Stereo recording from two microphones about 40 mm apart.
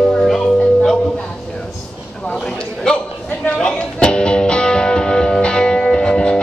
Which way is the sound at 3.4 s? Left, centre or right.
Left.